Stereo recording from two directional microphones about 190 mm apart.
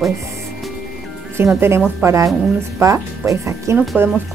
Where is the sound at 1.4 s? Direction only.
10° right (ahead or behind).